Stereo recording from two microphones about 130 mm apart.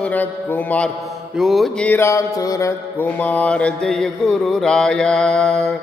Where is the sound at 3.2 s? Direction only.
10° left (ahead or behind).